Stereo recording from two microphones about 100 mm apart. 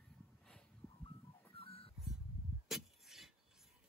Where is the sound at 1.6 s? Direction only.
70° left (ahead or behind).